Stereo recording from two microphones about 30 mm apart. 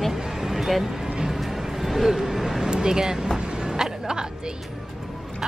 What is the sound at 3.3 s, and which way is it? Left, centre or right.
Music, centre.